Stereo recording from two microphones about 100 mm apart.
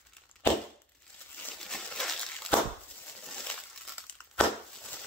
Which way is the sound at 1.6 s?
5° left (ahead or behind).